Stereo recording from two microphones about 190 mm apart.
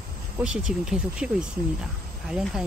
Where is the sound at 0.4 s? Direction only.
5° right (ahead or behind).